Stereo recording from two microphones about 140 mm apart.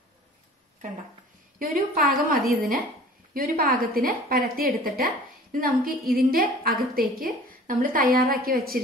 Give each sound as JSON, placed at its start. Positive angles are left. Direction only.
{"t": 1.6, "sound": "a woman's voice", "side_deg": -80}